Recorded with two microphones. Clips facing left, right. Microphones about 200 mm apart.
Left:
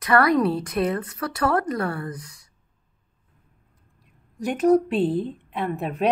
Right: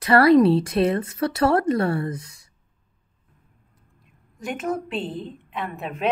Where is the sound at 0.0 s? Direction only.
30° right (ahead or behind).